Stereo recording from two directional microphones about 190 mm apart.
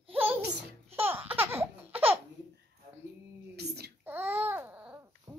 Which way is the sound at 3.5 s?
60° right (ahead or behind).